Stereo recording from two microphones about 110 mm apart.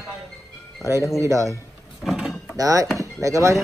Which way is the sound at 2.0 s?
5° right (ahead or behind).